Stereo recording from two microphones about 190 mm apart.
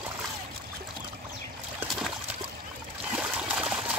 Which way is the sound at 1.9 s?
Centre (ahead or behind).